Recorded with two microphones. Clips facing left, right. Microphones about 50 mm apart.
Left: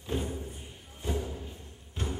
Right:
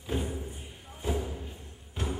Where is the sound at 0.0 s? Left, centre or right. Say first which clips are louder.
Right 1 dB; centre.